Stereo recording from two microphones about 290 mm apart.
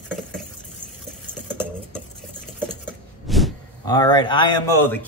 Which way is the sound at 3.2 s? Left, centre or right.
Centre.